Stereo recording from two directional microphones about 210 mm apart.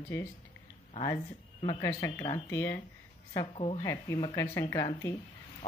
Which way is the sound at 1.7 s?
15° left (ahead or behind).